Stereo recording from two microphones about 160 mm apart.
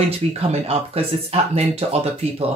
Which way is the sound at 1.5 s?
40° right (ahead or behind).